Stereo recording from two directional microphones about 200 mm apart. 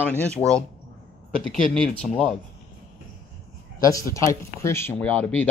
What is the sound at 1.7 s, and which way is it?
Speech, centre (ahead or behind).